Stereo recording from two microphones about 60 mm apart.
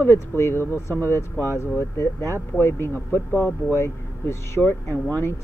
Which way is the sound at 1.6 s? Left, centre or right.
Left.